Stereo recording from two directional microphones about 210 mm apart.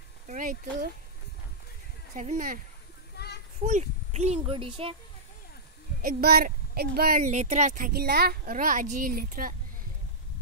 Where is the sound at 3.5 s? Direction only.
35° right (ahead or behind).